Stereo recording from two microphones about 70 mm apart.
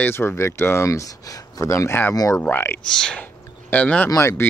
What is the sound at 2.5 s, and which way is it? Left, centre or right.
Speech, left.